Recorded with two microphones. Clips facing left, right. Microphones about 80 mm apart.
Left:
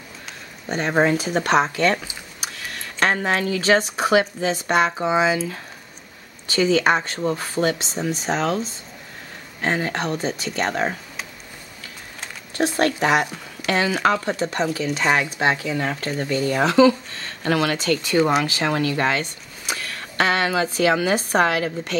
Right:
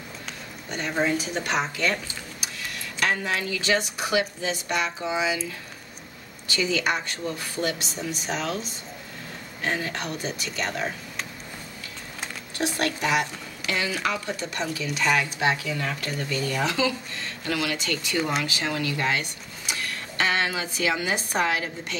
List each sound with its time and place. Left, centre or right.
0.7 s speech: left
3.0 s speech: left
6.6 s speech: left
10.5 s speech: left
12.7 s a woman's voice: left